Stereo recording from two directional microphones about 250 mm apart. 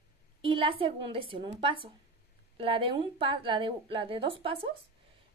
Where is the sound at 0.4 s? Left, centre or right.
Centre.